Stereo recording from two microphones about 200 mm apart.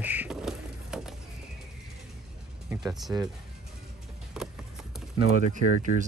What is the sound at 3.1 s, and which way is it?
Speech, 10° right (ahead or behind).